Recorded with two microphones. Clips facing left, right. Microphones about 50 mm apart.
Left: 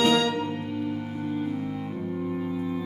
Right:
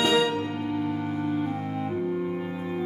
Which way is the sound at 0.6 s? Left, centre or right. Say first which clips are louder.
Right 2 dB; right.